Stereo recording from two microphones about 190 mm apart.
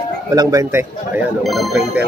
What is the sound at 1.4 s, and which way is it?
Speech, centre (ahead or behind).